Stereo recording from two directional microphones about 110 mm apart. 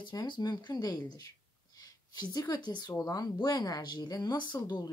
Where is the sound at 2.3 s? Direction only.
40° left (ahead or behind).